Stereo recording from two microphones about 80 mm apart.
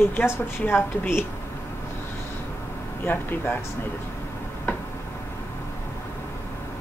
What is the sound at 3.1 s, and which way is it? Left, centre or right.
Speech, left.